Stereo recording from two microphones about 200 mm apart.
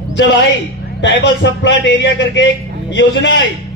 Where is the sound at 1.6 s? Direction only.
65° left (ahead or behind).